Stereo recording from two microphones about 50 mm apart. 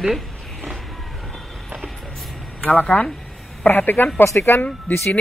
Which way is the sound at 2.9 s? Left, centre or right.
Left.